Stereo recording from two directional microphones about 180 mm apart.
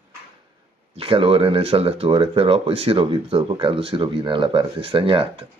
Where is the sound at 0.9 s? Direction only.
30° right (ahead or behind).